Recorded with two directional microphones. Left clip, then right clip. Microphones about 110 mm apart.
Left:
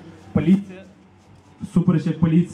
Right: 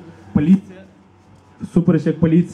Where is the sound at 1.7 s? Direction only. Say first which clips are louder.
Right 6 dB; 30° right (ahead or behind).